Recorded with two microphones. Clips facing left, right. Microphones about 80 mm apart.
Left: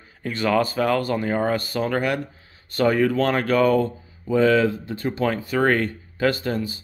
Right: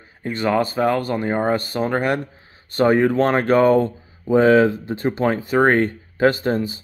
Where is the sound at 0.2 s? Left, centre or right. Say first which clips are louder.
Right 1 dB; right.